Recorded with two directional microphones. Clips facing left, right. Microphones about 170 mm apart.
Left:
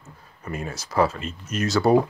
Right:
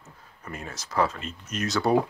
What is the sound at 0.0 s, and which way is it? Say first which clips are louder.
Speech: left 5 dB; 10° left (ahead or behind).